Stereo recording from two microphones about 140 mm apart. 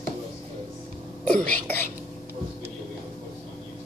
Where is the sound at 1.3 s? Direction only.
10° left (ahead or behind).